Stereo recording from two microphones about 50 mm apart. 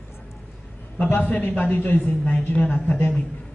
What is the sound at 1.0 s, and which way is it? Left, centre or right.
A man's voice, left.